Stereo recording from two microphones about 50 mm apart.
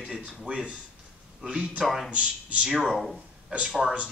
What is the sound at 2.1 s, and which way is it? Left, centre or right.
Speech, right.